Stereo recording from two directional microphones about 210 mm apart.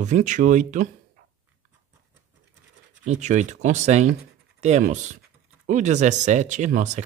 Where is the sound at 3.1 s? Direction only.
35° right (ahead or behind).